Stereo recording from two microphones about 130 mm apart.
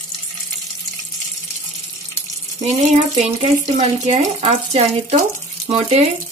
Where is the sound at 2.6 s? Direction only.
65° right (ahead or behind).